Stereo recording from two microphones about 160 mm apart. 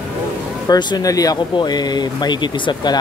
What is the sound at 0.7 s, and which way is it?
Speech, 25° left (ahead or behind).